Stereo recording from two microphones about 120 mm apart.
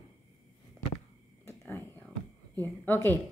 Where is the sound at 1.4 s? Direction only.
20° left (ahead or behind).